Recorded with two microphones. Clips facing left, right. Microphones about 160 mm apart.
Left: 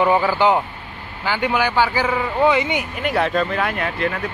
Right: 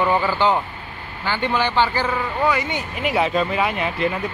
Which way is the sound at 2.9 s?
Centre (ahead or behind).